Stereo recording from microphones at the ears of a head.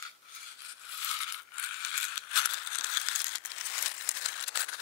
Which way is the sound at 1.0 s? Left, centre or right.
Left.